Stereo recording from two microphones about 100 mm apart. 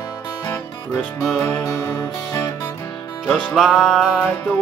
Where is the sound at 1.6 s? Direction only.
30° left (ahead or behind).